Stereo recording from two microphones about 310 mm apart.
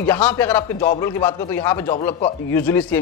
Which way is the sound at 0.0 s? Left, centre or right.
Centre.